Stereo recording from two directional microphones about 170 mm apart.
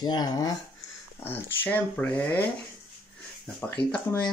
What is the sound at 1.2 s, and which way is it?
Speech, 10° left (ahead or behind).